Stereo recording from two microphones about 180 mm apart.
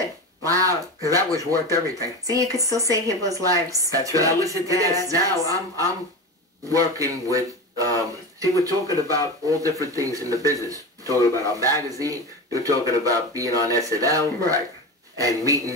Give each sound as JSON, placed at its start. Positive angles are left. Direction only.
{"t": 0.5, "sound": "speech", "side_deg": -20}